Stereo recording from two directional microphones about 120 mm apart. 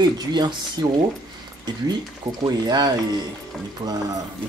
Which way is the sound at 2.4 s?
35° right (ahead or behind).